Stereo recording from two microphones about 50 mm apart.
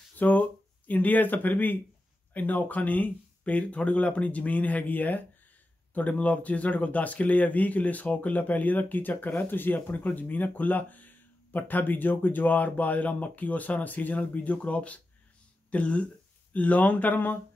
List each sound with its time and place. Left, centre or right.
0.2 s speech: left